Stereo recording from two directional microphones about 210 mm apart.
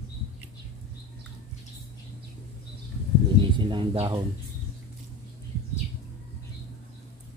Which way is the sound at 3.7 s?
25° right (ahead or behind).